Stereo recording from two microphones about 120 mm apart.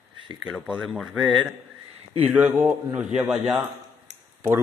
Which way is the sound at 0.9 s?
Centre (ahead or behind).